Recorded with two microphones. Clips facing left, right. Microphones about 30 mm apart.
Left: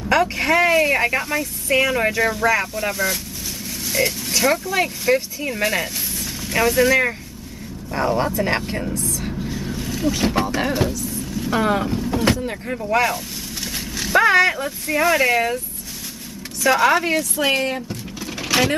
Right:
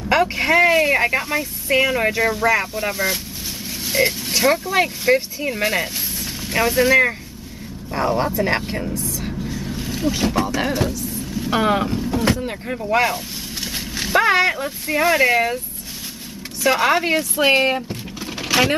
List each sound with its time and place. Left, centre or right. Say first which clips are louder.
0.1 s speech: right 1 dB; centre
8.9 s a sound: even; centre
9.8 s vehicle: even; centre
11.5 s speech: right 1 dB; centre
12.1 s boat: left 1 dB; centre
12.4 s speech: even; centre
16.6 s speech: left 1 dB; centre
18.4 s vehicle: right 1 dB; centre